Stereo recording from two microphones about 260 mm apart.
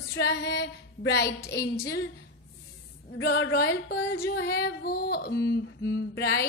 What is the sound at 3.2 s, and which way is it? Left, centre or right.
Female singing, left.